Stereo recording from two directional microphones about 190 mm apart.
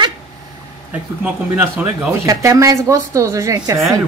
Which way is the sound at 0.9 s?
10° right (ahead or behind).